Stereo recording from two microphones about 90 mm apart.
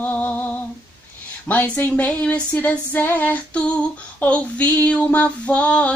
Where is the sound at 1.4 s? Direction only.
15° left (ahead or behind).